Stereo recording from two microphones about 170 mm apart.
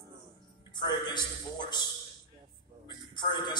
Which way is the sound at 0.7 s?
25° left (ahead or behind).